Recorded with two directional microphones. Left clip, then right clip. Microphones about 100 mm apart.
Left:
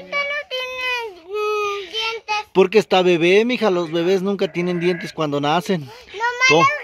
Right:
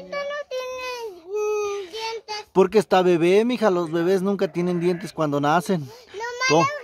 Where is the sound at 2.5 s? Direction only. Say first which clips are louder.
Left 2 dB; centre (ahead or behind).